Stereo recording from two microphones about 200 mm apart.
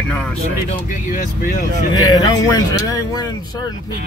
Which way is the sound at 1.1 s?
45° left (ahead or behind).